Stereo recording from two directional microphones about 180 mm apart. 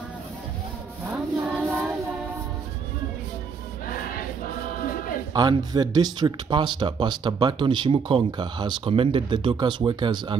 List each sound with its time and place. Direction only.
1.1 s child singing: 5° right (ahead or behind)
5.3 s speech: 20° right (ahead or behind)